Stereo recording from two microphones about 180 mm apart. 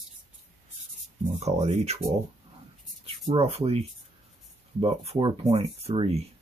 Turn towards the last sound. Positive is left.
turn(degrees=-35)  # may be behind; listen again after turning